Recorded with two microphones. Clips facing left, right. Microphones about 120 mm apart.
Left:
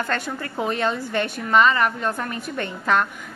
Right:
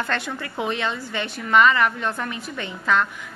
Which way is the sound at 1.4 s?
35° left (ahead or behind).